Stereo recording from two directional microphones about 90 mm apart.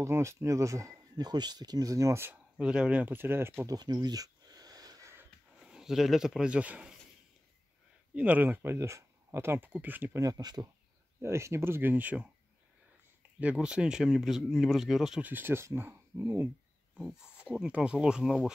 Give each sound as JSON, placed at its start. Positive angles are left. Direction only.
{"t": 0.0, "sound": "speech", "side_deg": -30}
{"t": 2.5, "sound": "speech", "side_deg": -10}
{"t": 3.6, "sound": "a sound", "side_deg": -45}
{"t": 5.6, "sound": "speech", "side_deg": -5}
{"t": 8.1, "sound": "speech", "side_deg": -15}
{"t": 10.1, "sound": "speech", "side_deg": -45}
{"t": 11.1, "sound": "speech", "side_deg": -30}
{"t": 13.4, "sound": "speech", "side_deg": -15}
{"t": 15.2, "sound": "speech", "side_deg": -20}
{"t": 17.2, "sound": "speech", "side_deg": -10}